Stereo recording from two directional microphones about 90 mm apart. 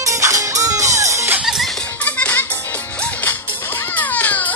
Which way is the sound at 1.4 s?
Centre (ahead or behind).